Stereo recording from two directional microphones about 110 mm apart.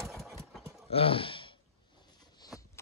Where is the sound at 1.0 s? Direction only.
60° left (ahead or behind).